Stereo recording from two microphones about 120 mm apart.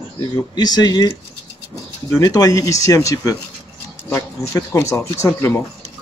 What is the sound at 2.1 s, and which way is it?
Speech, 30° left (ahead or behind).